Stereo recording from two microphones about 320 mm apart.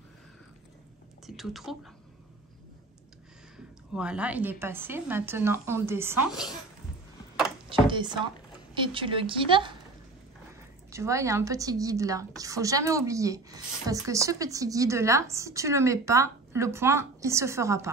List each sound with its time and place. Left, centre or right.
1.2 s speech: centre
3.5 s a woman's voice: centre
7.8 s a woman's voice: centre
10.9 s a woman's voice: centre